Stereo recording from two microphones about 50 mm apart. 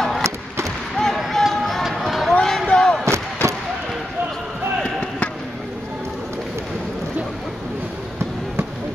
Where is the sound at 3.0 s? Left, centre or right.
Right.